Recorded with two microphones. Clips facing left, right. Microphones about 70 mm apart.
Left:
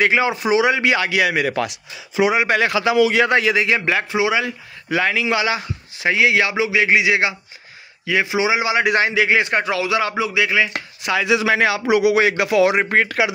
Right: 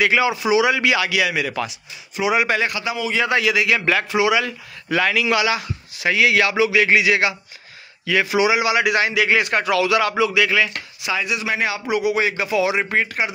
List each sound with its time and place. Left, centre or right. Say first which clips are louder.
0.1 s a man's voice: even; left
2.6 s a man's voice: left 7 dB; left
3.2 s a man's voice: left 3 dB; left
3.8 s a man's voice: right 1 dB; left
10.7 s speech: left 3 dB; left
11.1 s speech: left 7 dB; left
11.9 s a man's voice: left 4 dB; left
12.9 s a man's voice: left 4 dB; left